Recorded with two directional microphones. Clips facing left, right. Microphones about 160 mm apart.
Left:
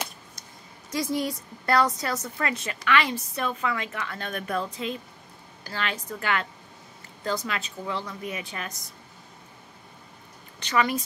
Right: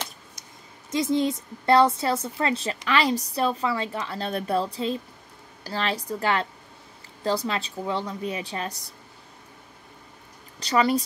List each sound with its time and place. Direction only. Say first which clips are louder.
0.8 s a woman's voice: right 4 dB; 20° right (ahead or behind)
10.6 s a woman's voice: right 3 dB; 35° right (ahead or behind)